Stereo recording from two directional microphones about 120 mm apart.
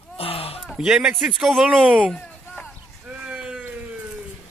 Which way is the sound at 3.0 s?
10° right (ahead or behind).